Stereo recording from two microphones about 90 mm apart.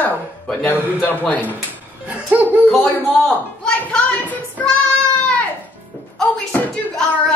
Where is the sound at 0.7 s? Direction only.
20° left (ahead or behind).